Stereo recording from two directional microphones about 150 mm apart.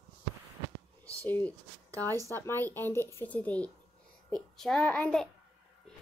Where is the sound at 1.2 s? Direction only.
10° left (ahead or behind).